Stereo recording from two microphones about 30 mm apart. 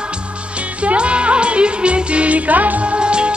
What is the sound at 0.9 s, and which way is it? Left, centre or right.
Music, right.